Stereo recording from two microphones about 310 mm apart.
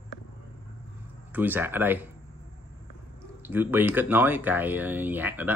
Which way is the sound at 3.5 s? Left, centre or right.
Centre.